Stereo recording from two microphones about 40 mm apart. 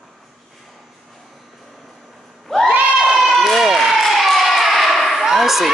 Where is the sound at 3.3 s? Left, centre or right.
Centre.